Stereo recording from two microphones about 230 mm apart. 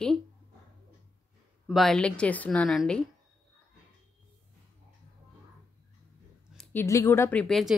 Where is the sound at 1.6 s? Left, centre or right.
Centre.